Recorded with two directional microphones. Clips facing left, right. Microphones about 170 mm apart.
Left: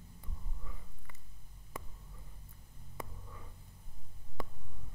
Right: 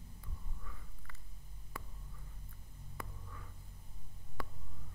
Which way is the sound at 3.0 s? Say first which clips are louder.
Left 3 dB; 20° left (ahead or behind).